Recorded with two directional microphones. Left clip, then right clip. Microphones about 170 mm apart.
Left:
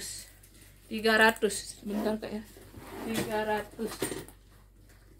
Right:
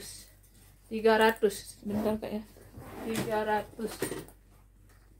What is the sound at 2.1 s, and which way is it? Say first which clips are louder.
Speech: right 1 dB; 50° right (ahead or behind).